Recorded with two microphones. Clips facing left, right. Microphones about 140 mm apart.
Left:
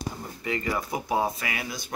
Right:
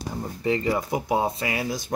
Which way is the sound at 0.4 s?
25° right (ahead or behind).